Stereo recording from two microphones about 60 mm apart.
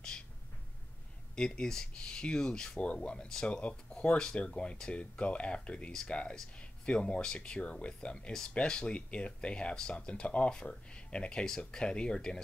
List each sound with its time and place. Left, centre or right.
1.3 s speech: centre